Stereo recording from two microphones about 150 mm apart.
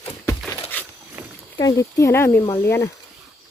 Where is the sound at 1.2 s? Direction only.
10° right (ahead or behind).